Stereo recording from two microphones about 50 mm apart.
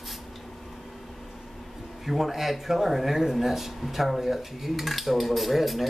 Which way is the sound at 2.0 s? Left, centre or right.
Centre.